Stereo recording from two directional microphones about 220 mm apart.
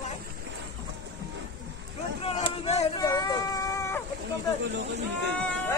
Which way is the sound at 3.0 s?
15° left (ahead or behind).